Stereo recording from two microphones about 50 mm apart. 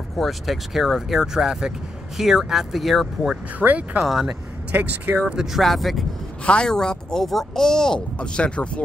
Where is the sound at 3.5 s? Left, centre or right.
Right.